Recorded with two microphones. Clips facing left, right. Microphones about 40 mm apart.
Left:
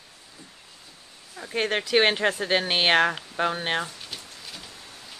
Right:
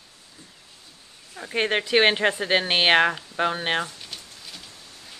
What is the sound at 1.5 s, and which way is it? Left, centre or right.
Speech, centre.